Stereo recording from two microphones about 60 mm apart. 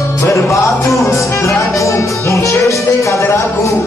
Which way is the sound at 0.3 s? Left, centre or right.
Left.